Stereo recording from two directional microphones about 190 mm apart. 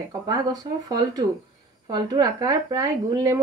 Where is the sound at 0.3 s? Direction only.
20° right (ahead or behind).